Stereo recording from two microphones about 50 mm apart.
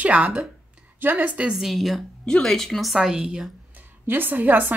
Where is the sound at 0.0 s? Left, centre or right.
Right.